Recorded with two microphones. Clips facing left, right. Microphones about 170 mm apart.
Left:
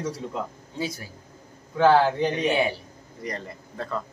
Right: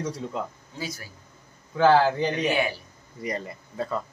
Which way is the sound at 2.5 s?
25° left (ahead or behind).